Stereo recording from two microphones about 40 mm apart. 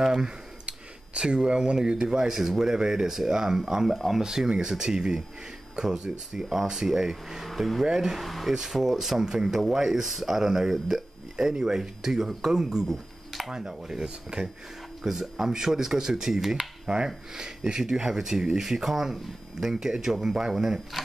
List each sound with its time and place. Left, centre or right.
0.0 s a sound: centre
1.1 s speech: right; by 4.2 s centre
4.2 s speech: centre
8.3 s speech: centre
8.5 s speech: centre
12.8 s a sound: centre
13.5 s speech: centre
16.8 s speech: right